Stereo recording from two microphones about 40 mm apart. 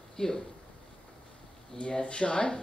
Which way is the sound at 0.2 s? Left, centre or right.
Centre.